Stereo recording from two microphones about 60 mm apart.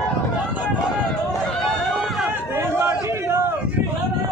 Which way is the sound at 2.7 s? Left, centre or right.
Right.